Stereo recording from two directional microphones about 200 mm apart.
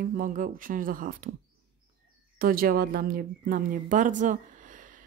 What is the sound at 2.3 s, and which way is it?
A woman's voice, 45° right (ahead or behind).